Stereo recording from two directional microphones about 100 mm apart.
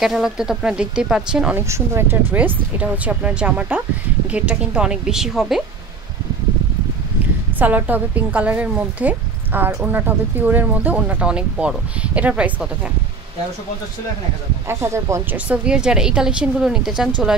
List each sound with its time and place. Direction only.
0.0 s a woman's voice: 5° right (ahead or behind)
1.5 s a woman's voice: 25° right (ahead or behind); by 5.6 s 5° right (ahead or behind)
7.5 s a woman's voice: 15° right (ahead or behind)
14.7 s speech: 25° right (ahead or behind)
15.3 s a woman's voice: 15° right (ahead or behind)